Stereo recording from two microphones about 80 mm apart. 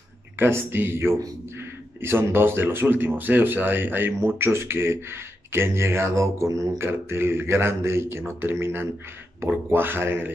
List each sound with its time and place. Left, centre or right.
0.4 s speech: right
4.1 s mantra: right
9.4 s speech: right